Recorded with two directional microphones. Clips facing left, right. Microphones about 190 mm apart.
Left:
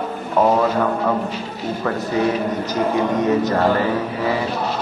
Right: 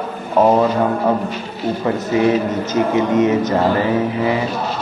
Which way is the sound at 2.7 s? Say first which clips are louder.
Right 4 dB; 20° right (ahead or behind).